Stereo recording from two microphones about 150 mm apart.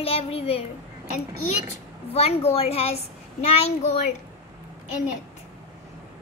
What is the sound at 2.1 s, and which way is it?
A woman's voice, 40° left (ahead or behind).